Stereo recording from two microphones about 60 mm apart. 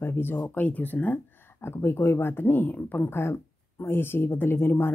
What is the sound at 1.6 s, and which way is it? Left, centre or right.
Speech, left.